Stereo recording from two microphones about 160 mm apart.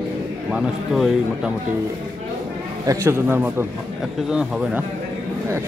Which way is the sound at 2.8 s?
15° right (ahead or behind).